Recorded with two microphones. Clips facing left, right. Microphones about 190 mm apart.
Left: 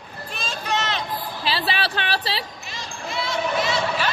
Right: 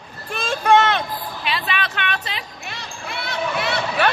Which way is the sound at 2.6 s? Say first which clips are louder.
Even; 60° right (ahead or behind).